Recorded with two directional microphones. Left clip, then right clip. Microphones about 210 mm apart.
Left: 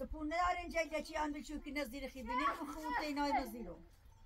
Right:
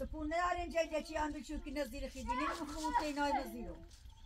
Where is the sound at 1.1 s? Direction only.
30° left (ahead or behind).